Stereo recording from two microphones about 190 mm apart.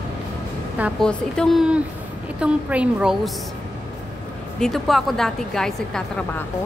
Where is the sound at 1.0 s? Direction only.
5° left (ahead or behind).